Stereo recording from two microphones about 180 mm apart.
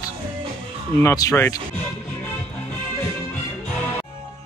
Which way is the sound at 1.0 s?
15° left (ahead or behind).